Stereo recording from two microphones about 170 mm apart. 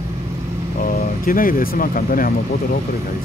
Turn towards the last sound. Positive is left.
turn(degrees=55)  # may be behind; listen again after turning